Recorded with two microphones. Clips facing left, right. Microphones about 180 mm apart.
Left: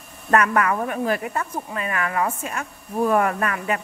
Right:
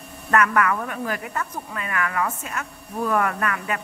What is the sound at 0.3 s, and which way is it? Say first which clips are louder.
A woman's voice: left 1 dB; 30° left (ahead or behind).